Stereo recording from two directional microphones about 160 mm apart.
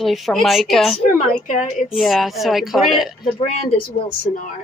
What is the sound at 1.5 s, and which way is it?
Speech, 50° left (ahead or behind).